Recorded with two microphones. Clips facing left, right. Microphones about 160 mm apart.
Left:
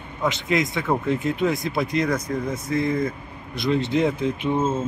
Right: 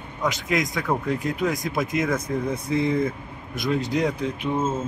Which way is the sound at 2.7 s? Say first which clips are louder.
Even; 20° right (ahead or behind).